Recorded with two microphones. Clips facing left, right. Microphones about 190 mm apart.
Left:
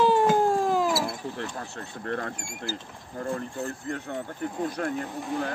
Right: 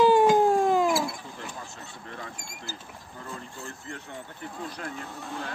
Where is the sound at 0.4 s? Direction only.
Centre (ahead or behind).